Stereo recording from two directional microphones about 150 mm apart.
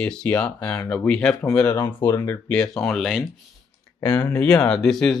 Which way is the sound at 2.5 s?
5° left (ahead or behind).